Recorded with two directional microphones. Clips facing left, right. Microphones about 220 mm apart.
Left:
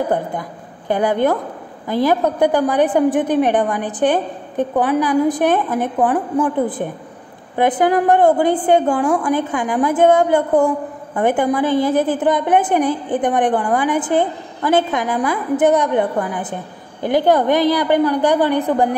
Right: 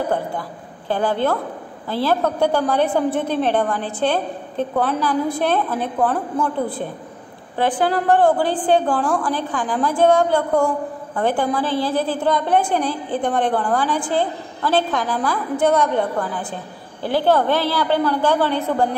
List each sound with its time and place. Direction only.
0.0 s a woman's voice: 15° left (ahead or behind)